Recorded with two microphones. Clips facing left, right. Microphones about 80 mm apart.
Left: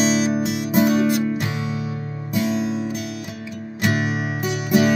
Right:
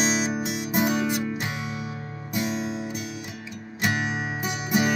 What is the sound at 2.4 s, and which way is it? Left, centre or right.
Music, centre.